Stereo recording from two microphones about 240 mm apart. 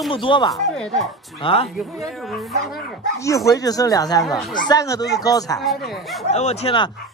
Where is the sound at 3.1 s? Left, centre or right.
Centre.